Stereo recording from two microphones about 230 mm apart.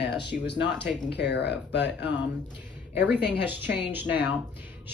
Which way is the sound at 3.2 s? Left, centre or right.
Left.